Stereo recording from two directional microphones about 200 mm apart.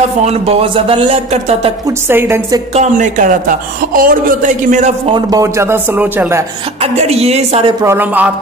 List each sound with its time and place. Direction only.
0.2 s a man's voice: 30° right (ahead or behind)
1.9 s speech: 10° right (ahead or behind)
2.7 s a man's voice: 35° right (ahead or behind)
5.1 s speech: 15° right (ahead or behind)
6.8 s a man's voice: 30° right (ahead or behind)
7.8 s speech: 10° right (ahead or behind)